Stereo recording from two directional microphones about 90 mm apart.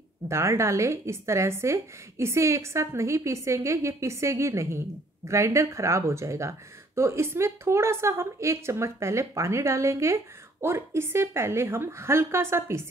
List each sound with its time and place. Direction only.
0.3 s speech: 30° right (ahead or behind)